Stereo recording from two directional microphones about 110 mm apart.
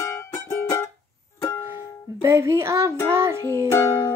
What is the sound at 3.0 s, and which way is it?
Child singing, 25° right (ahead or behind).